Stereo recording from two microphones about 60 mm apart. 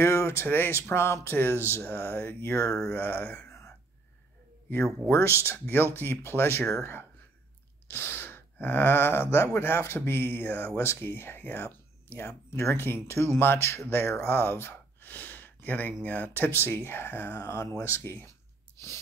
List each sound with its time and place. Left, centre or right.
0.0 s a sound: left
0.5 s speech: left
2.5 s speech: left
2.9 s speech: left
5.0 s speech: left
12.3 s speech: left
17.4 s speech: left